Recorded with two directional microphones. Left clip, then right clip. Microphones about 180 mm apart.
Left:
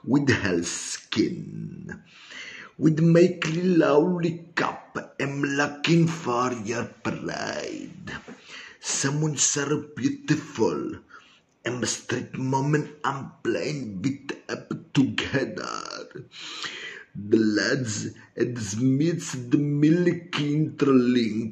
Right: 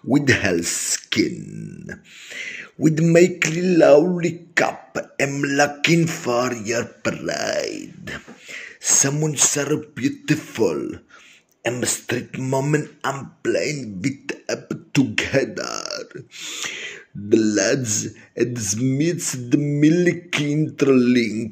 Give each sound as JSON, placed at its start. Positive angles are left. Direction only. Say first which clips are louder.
{"t": 0.1, "sound": "speech", "louder": "right 5 dB", "side_deg": -20}